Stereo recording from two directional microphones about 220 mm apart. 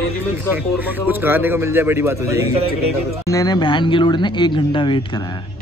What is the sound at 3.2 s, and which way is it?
Speech, 15° left (ahead or behind).